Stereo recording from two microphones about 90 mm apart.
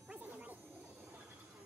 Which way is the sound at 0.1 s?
15° right (ahead or behind).